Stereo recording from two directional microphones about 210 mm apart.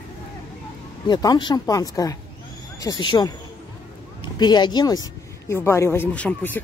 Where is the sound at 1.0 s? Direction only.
20° left (ahead or behind).